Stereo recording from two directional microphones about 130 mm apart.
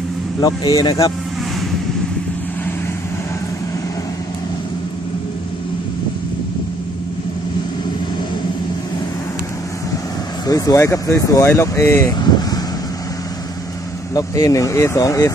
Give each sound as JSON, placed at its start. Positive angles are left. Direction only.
{"t": 0.4, "sound": "speech", "side_deg": 30}
{"t": 10.4, "sound": "speech", "side_deg": 25}
{"t": 12.2, "sound": "speech", "side_deg": 30}
{"t": 14.1, "sound": "speech", "side_deg": 25}